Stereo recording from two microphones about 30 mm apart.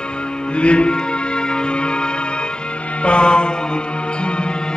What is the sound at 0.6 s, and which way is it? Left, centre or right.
Music, left.